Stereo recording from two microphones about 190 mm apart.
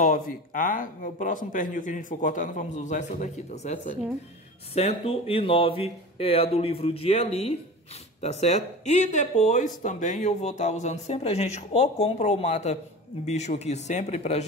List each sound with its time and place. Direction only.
0.0 s speech: 45° left (ahead or behind)